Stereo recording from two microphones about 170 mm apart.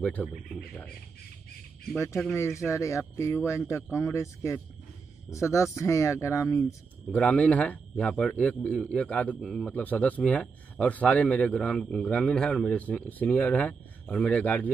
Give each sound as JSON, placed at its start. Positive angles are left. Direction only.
{"t": 0.0, "sound": "a man's voice", "side_deg": 5}
{"t": 2.1, "sound": "a man's voice", "side_deg": 15}